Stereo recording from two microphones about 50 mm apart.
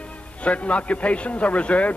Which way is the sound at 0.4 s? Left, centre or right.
Left.